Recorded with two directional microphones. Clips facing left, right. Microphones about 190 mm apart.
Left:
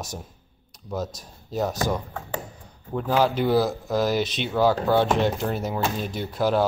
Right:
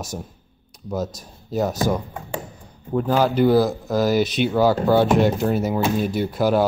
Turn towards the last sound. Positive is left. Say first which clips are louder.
# right 4 dB
turn(degrees=-5)  # may be behind; listen again after turning